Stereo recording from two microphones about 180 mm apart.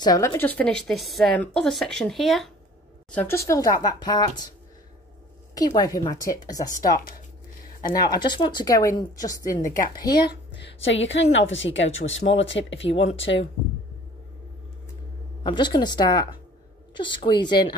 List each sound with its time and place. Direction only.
0.0 s a woman's voice: 15° left (ahead or behind)
5.8 s speech: 20° left (ahead or behind)
7.9 s speech: 20° left (ahead or behind)
10.5 s a woman's voice: 85° left
15.4 s speech: 25° left (ahead or behind)